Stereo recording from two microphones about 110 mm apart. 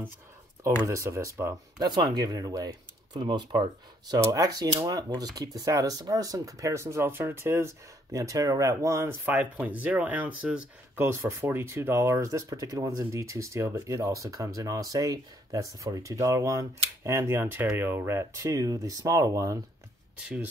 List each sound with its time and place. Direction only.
0.8 s speech: 25° right (ahead or behind)
1.8 s speech: 40° right (ahead or behind)